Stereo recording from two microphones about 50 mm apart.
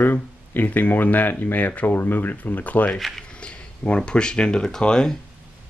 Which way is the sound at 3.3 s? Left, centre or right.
Left.